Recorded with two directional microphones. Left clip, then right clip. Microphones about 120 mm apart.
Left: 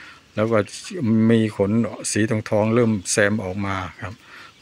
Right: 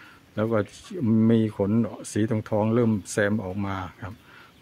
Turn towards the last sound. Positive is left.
turn(degrees=5)  # may be behind; listen again after turning